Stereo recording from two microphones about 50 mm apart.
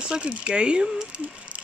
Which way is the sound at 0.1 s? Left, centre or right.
Right.